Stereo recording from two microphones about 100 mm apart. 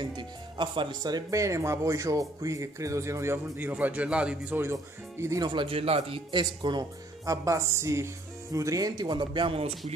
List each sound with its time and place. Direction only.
0.0 s speech: 50° right (ahead or behind); by 4.6 s 10° right (ahead or behind)
5.4 s a man's voice: 50° right (ahead or behind)
5.7 s speech: 80° right
6.4 s a man's voice: 45° right (ahead or behind)
7.2 s a man's voice: 30° right (ahead or behind); by 9.6 s 55° right (ahead or behind)
9.6 s speech: 80° right